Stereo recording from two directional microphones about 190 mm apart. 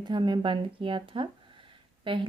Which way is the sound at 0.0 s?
25° right (ahead or behind).